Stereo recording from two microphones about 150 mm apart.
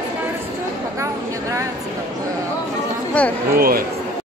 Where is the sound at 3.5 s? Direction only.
75° right (ahead or behind).